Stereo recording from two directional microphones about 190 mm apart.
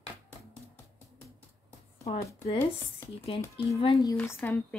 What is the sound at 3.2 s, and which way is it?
Speech, 30° left (ahead or behind).